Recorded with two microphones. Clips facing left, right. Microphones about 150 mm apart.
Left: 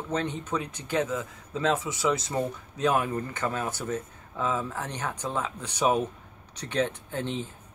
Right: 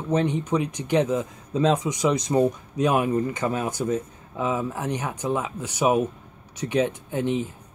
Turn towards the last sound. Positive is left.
turn(degrees=-15)  # may be behind; listen again after turning